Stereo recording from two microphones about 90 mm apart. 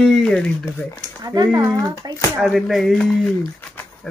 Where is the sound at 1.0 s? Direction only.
50° right (ahead or behind).